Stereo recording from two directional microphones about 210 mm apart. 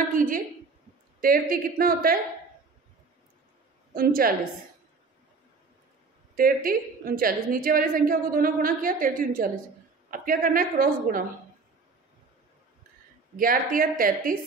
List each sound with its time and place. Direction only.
0.1 s a woman's voice: 40° right (ahead or behind)
3.9 s a woman's voice: 45° right (ahead or behind)
6.3 s a woman's voice: 45° right (ahead or behind)
13.4 s a woman's voice: 40° right (ahead or behind)